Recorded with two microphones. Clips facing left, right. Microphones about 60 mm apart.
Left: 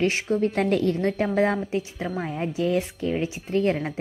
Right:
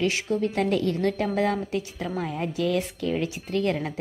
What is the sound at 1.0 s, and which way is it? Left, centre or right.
Speech, left.